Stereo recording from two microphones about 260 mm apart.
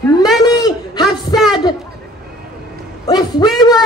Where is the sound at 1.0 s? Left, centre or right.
Centre.